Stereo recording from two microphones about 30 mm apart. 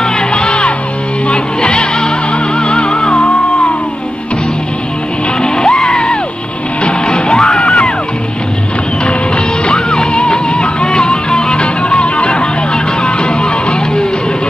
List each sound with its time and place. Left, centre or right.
0.3 s music: left
5.7 s music: centre
6.8 s music: left
7.6 s music: left
10.1 s music: left
10.9 s music: left